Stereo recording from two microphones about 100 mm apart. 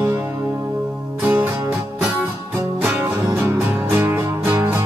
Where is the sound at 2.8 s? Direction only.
20° right (ahead or behind).